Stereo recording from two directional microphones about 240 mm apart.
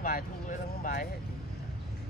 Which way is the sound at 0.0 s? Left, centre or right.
Left.